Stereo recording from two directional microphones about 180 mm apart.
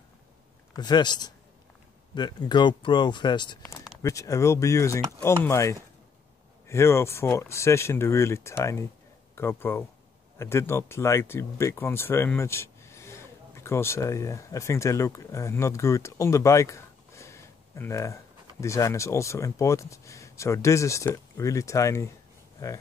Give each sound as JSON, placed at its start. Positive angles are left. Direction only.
{"t": 0.7, "sound": "speech", "side_deg": 25}